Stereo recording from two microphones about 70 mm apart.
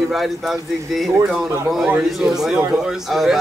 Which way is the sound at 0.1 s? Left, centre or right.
Centre.